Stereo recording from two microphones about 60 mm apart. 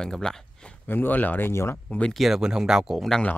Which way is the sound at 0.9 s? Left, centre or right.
Left.